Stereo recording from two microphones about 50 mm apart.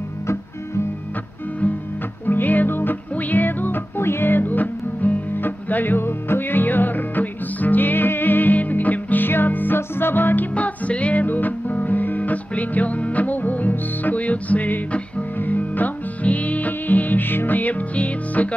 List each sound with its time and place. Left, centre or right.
2.2 s music: left
10.5 s music: left
11.2 s music: left